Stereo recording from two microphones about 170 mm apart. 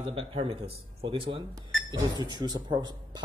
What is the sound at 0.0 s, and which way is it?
A man's voice, 30° right (ahead or behind).